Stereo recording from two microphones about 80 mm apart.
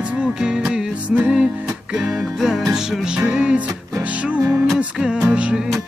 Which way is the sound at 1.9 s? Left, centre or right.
Centre.